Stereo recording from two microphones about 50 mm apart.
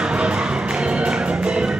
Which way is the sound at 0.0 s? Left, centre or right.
Centre.